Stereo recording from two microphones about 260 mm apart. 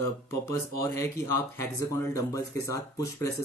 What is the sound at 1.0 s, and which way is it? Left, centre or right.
Speech, centre.